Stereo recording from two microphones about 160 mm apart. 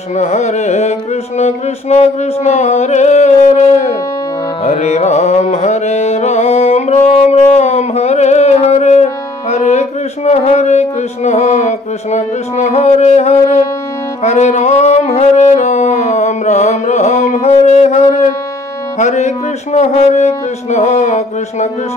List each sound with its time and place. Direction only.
0.1 s speech: 45° left (ahead or behind)
4.6 s music: 45° left (ahead or behind)
14.2 s singing: 45° left (ahead or behind)
18.9 s speech: 45° left (ahead or behind)